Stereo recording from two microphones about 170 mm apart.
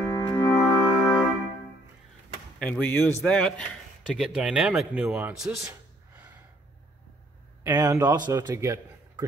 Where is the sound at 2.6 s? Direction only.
10° left (ahead or behind).